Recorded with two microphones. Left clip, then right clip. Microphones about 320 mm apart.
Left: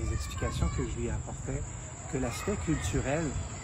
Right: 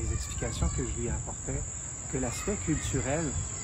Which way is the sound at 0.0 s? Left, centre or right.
Centre.